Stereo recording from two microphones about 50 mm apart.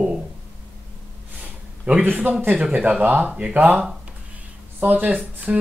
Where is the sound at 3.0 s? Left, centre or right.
Right.